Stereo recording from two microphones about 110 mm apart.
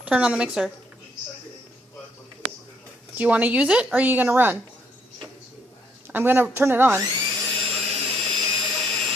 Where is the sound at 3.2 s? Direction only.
15° right (ahead or behind).